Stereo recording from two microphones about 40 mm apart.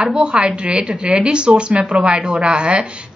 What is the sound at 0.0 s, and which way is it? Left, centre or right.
Speech, right.